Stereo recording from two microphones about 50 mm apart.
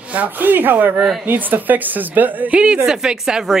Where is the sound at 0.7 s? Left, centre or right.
Right.